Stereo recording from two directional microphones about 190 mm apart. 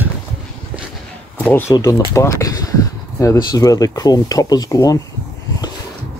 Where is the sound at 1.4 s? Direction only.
10° left (ahead or behind).